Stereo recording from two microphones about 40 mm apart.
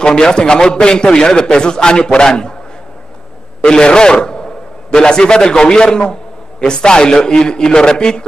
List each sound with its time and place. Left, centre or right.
0.0 s a man's voice: centre
3.6 s a man's voice: centre